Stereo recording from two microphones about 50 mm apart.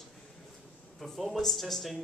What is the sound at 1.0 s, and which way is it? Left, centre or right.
A man's voice, centre.